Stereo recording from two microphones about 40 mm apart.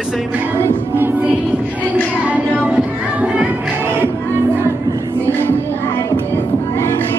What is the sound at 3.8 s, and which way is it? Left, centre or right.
Music, right.